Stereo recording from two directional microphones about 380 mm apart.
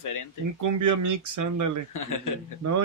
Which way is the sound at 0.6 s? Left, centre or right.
Right.